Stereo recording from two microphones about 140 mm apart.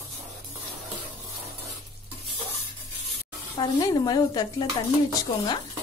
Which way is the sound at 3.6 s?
30° left (ahead or behind).